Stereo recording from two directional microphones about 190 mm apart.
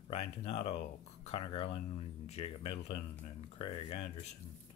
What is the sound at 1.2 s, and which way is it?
Speech, 30° left (ahead or behind).